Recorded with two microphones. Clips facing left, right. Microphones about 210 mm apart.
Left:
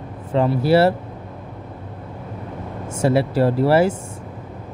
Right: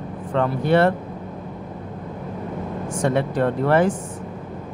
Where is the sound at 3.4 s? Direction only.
30° left (ahead or behind).